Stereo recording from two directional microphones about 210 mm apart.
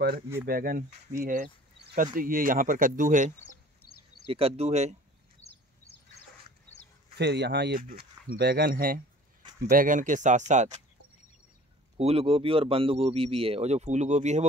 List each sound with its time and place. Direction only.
0.5 s speech: 45° right (ahead or behind)
3.8 s a sound: 45° left (ahead or behind)
4.3 s speech: 30° right (ahead or behind)
5.4 s a sound: 30° left (ahead or behind)
7.2 s speech: 50° right (ahead or behind); by 10.8 s 35° right (ahead or behind)
12.0 s speech: 30° right (ahead or behind)